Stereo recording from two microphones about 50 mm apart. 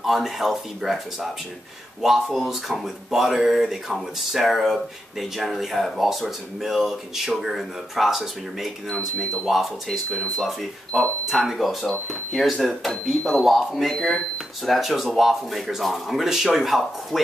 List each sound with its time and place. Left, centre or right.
0.0 s speech: centre